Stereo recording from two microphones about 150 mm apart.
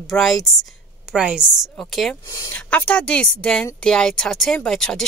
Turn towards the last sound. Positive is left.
turn(degrees=5)  # may be behind; listen again after turning